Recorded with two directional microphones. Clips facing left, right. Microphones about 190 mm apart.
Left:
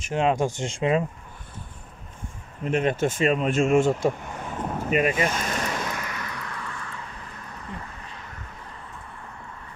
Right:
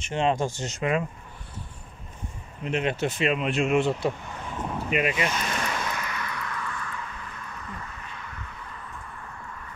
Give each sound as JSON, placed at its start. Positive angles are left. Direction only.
{"t": 0.1, "sound": "speech", "side_deg": 5}
{"t": 0.5, "sound": "speech", "side_deg": 25}
{"t": 2.6, "sound": "speech", "side_deg": 45}
{"t": 4.7, "sound": "a sound", "side_deg": 45}